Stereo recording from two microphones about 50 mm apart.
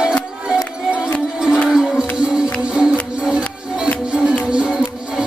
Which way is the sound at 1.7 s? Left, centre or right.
Centre.